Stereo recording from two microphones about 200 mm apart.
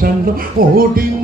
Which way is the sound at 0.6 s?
45° right (ahead or behind).